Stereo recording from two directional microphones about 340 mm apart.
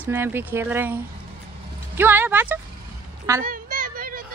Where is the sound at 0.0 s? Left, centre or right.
Centre.